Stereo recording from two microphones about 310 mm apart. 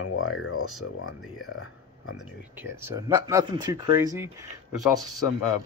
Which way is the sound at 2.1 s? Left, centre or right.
Centre.